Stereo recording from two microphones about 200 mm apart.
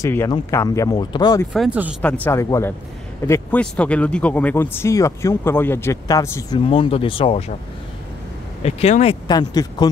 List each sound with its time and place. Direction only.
0.0 s speech: 15° left (ahead or behind)
1.5 s speech: 5° right (ahead or behind)
2.2 s speech: 15° left (ahead or behind)
6.6 s speech: 25° left (ahead or behind)
8.6 s speech: 30° left (ahead or behind)
9.3 s speech: 20° left (ahead or behind)